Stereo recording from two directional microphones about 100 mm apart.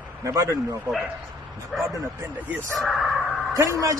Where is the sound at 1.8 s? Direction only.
20° right (ahead or behind).